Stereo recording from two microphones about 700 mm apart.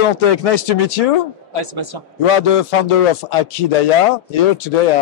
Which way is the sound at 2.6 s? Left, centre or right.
Left.